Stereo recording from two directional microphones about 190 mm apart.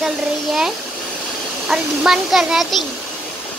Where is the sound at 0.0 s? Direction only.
Centre (ahead or behind).